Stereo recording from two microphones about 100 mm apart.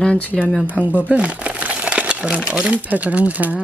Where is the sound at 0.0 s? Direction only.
15° left (ahead or behind).